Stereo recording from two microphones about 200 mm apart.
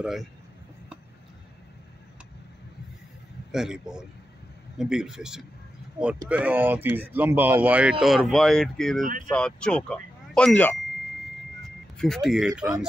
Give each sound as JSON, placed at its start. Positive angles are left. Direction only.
{"t": 0.0, "sound": "speech", "side_deg": 0}
{"t": 3.5, "sound": "a man's voice", "side_deg": -5}
{"t": 9.0, "sound": "speech", "side_deg": -40}
{"t": 9.3, "sound": "speech", "side_deg": 5}
{"t": 12.0, "sound": "speech", "side_deg": 0}